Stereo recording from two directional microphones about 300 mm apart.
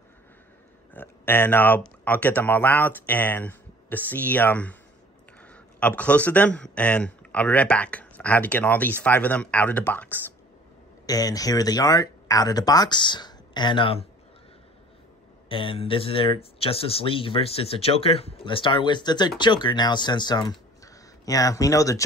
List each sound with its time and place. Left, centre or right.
0.9 s speech: centre
15.4 s speech: centre